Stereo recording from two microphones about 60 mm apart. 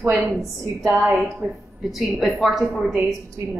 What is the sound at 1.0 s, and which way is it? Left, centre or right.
Speech, right.